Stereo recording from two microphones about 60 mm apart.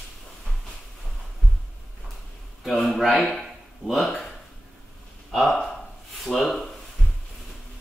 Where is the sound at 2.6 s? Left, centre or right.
Centre.